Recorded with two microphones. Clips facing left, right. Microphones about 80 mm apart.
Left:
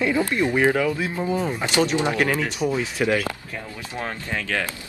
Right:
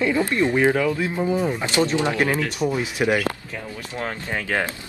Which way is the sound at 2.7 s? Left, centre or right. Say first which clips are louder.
Right 1 dB; centre.